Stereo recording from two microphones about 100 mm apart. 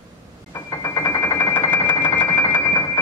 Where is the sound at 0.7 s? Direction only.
35° left (ahead or behind).